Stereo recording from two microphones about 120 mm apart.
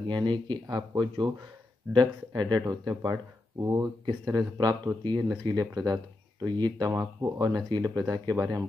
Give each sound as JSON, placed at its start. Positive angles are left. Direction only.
{"t": 0.0, "sound": "speech", "side_deg": -40}